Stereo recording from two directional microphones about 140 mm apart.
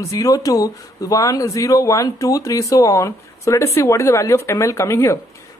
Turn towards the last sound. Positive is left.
turn(degrees=20)  # may be behind; listen again after turning